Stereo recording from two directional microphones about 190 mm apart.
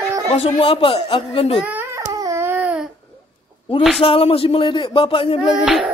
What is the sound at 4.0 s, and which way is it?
Speech, 30° left (ahead or behind).